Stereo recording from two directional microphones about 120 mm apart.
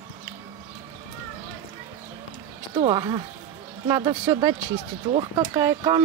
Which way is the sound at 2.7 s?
40° right (ahead or behind).